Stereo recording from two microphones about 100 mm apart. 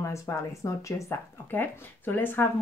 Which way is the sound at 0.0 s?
30° left (ahead or behind).